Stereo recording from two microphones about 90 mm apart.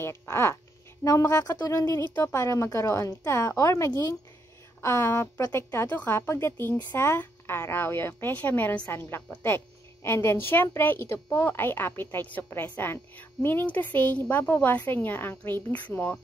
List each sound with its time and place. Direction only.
0.0 s a woman's voice: 30° left (ahead or behind)